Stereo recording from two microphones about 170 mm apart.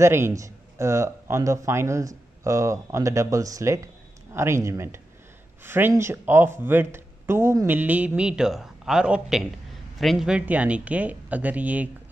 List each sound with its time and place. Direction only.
0.0 s speech: 15° right (ahead or behind)